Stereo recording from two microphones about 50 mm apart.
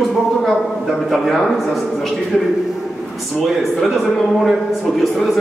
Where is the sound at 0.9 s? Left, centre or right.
Centre.